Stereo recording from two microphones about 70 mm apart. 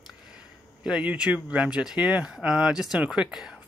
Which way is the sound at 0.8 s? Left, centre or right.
Centre.